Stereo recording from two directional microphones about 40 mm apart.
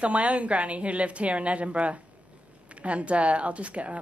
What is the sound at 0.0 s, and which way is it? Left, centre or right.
A woman's voice, right.